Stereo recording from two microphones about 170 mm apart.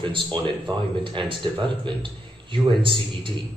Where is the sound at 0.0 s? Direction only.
30° right (ahead or behind).